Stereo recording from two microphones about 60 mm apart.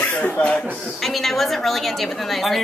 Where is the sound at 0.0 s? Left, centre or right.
Left.